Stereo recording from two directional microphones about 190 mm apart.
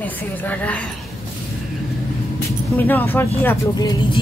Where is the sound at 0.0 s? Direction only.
10° left (ahead or behind).